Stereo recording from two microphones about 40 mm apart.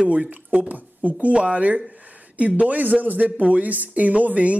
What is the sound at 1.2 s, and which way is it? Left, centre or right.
Speech, right.